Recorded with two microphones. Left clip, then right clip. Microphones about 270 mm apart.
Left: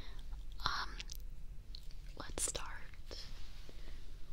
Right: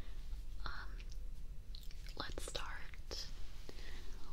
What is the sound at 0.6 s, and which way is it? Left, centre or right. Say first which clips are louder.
Chewing: left 11 dB; left.